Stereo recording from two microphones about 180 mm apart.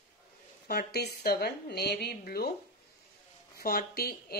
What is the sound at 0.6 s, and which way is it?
Speech, 60° left (ahead or behind).